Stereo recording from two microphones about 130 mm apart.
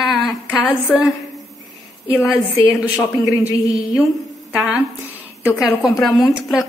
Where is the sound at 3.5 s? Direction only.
25° left (ahead or behind).